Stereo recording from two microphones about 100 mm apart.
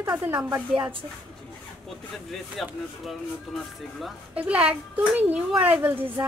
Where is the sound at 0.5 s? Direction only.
45° right (ahead or behind).